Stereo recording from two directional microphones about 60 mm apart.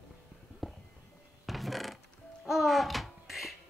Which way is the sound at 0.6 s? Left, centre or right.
Centre.